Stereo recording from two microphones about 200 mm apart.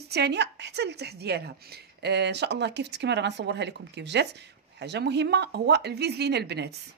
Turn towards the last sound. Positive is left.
turn(degrees=-55)  # may be behind; listen again after turning